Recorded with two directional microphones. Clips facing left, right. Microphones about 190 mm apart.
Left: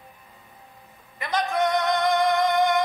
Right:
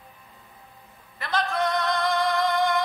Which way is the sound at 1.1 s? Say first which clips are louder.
Left 2 dB; 20° left (ahead or behind).